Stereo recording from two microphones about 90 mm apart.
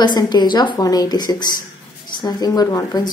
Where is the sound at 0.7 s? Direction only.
45° left (ahead or behind).